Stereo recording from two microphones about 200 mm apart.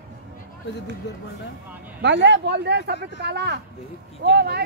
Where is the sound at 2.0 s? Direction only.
60° right (ahead or behind).